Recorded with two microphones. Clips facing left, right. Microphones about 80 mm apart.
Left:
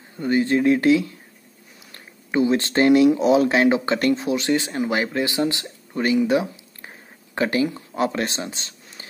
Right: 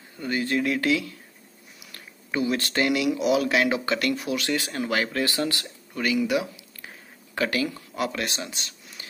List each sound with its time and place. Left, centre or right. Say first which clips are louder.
0.2 s speech: left 7 dB; left